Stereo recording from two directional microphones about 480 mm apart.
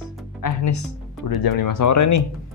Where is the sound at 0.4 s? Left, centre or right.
Left.